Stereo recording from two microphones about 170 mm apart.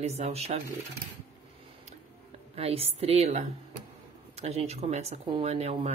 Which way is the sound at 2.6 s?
35° right (ahead or behind).